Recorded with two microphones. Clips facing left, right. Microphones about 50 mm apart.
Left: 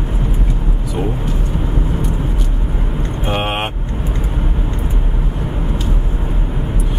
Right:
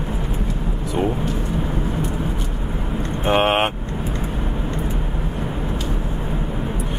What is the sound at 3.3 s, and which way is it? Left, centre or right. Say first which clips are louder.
Vehicle: right 4 dB; centre.